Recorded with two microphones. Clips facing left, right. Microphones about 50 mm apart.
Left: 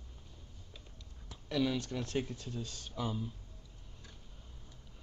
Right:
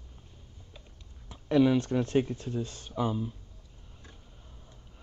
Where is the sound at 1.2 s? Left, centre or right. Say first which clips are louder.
Right 10 dB; right.